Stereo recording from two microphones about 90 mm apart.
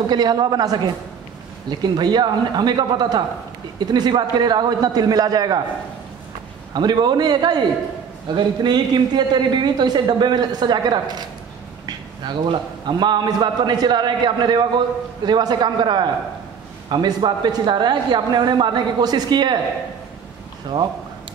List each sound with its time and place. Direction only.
0.1 s a man's voice: 50° right (ahead or behind)
6.7 s a man's voice: 55° right (ahead or behind)